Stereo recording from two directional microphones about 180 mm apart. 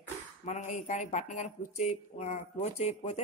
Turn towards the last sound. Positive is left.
turn(degrees=40)  # may be behind; listen again after turning